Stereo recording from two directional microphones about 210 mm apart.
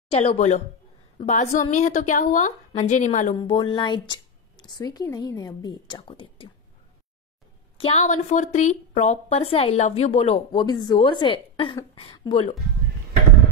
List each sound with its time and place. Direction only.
0.1 s a woman's voice: 30° left (ahead or behind)
3.3 s a woman's voice: 20° left (ahead or behind)
7.7 s a woman's voice: 30° left (ahead or behind)